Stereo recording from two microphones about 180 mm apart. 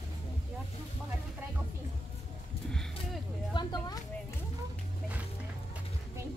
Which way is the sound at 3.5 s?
20° left (ahead or behind).